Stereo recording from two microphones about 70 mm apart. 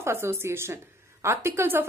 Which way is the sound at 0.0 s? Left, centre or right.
Right.